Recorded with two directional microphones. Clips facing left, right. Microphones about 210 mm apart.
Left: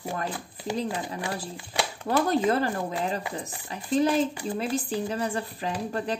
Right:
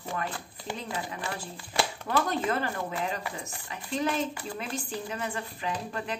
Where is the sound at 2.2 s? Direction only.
35° left (ahead or behind).